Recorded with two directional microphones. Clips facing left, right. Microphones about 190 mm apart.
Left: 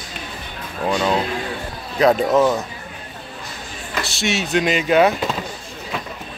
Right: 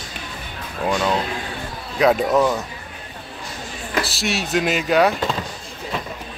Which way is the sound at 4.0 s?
Centre (ahead or behind).